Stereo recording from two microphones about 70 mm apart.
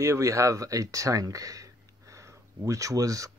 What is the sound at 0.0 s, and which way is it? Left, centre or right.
Speech, right.